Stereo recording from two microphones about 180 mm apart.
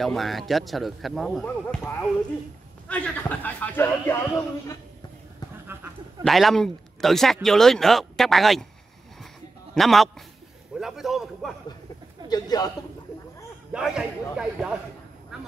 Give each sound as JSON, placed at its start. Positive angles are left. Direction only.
{"t": 0.0, "sound": "a man's voice", "side_deg": 0}
{"t": 6.2, "sound": "speech", "side_deg": 0}
{"t": 9.8, "sound": "speech", "side_deg": 0}
{"t": 12.3, "sound": "a woman's voice", "side_deg": 20}
{"t": 13.7, "sound": "speech", "side_deg": -5}
{"t": 15.3, "sound": "quack", "side_deg": 0}